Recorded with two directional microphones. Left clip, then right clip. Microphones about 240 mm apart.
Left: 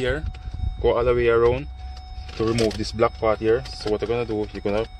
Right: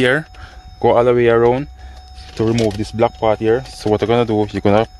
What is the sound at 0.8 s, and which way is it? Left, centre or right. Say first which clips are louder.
Speech: right 7 dB; right.